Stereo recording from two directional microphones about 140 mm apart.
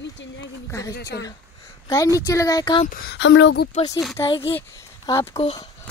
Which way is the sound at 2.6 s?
35° left (ahead or behind).